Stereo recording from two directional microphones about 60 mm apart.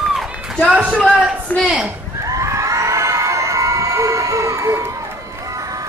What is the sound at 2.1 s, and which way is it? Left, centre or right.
Crowd, right.